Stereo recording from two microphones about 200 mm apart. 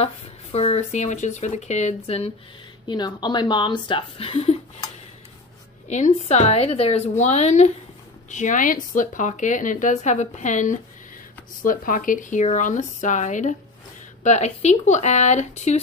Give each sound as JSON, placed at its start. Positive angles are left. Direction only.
{"t": 0.0, "sound": "a woman's voice", "side_deg": 30}
{"t": 5.9, "sound": "speech", "side_deg": 35}